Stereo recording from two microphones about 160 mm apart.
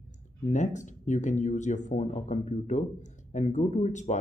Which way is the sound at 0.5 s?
50° left (ahead or behind).